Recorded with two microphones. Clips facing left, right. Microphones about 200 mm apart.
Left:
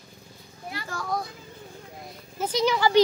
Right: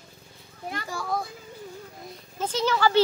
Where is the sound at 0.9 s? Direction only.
5° right (ahead or behind).